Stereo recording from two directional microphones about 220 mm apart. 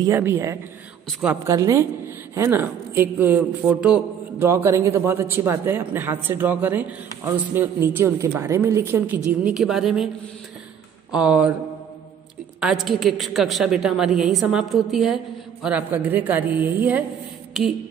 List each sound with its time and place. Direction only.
0.0 s a woman's voice: 10° right (ahead or behind)
11.1 s speech: 5° right (ahead or behind)
12.5 s a woman's voice: centre (ahead or behind)